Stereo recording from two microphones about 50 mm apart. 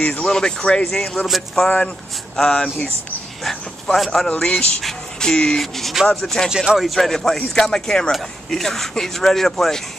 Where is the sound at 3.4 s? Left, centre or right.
Centre.